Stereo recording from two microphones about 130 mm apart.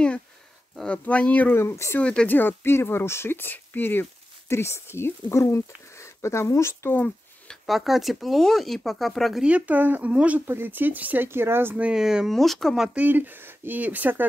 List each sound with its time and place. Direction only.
0.7 s speech: 10° left (ahead or behind)
7.4 s speech: centre (ahead or behind)